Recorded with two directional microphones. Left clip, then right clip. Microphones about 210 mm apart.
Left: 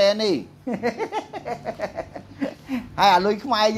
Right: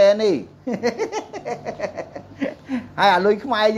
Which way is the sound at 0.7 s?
10° right (ahead or behind).